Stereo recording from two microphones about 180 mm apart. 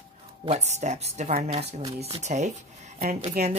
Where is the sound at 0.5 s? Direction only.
40° right (ahead or behind).